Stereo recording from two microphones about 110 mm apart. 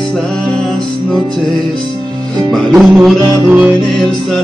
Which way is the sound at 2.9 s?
5° right (ahead or behind).